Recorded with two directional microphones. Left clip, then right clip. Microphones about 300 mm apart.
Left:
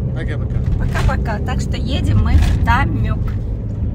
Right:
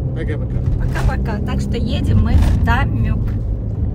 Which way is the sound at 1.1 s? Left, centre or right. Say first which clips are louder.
Left 2 dB; centre.